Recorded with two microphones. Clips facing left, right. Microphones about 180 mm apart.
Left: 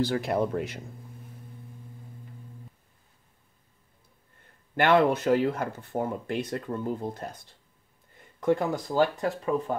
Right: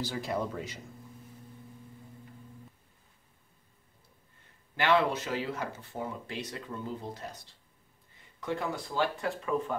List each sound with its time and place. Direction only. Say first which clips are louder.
0.0 s speech: left 7 dB; 60° left (ahead or behind)
4.7 s speech: left 5 dB; 55° left (ahead or behind)
8.4 s speech: left 9 dB; 50° left (ahead or behind)